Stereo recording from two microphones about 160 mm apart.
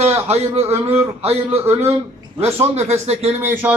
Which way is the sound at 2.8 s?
40° right (ahead or behind).